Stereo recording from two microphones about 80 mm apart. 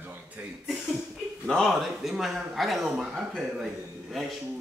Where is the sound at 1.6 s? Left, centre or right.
Centre.